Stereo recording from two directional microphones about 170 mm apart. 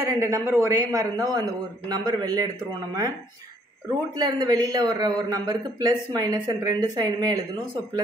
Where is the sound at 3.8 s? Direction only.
20° right (ahead or behind).